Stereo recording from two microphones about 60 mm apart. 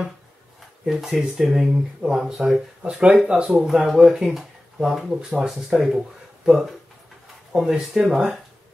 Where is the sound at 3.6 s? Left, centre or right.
Centre.